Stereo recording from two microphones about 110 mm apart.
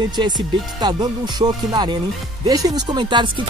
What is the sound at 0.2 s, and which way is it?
Speech, 45° right (ahead or behind).